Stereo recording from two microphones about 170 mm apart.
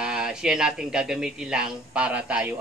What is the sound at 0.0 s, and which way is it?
Speech, 5° right (ahead or behind).